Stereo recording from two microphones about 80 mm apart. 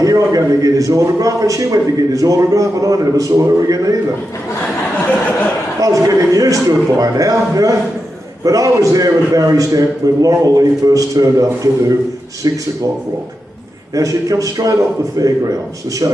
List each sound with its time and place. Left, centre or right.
0.0 s a man's voice: right
5.8 s a man's voice: right
13.9 s a man's voice: right